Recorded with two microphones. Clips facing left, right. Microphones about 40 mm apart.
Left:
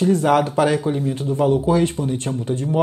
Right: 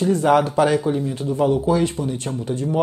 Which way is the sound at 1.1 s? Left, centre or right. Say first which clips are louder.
Left 3 dB; left.